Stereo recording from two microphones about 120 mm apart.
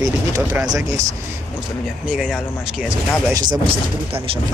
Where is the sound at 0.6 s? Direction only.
35° right (ahead or behind).